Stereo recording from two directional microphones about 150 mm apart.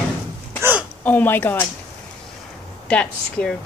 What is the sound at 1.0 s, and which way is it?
Speech, 10° left (ahead or behind).